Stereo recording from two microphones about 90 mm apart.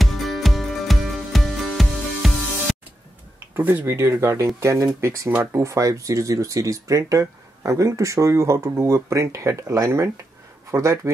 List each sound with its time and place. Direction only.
0.0 s music: centre (ahead or behind)
3.5 s speech: 25° right (ahead or behind)